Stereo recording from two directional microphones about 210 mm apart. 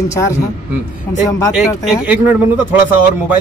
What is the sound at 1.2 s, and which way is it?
Speech, 15° left (ahead or behind).